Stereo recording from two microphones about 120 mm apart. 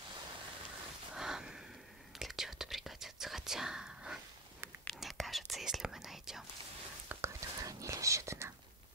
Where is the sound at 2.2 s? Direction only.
Centre (ahead or behind).